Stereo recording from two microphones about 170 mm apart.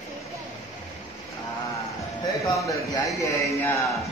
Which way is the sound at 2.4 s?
20° left (ahead or behind).